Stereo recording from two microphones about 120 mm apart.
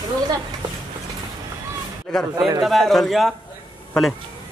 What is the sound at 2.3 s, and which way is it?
Speech, 30° right (ahead or behind).